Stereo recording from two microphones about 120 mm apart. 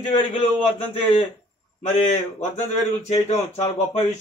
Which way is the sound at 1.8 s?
70° left (ahead or behind).